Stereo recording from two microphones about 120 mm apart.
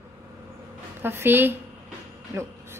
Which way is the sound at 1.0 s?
20° right (ahead or behind).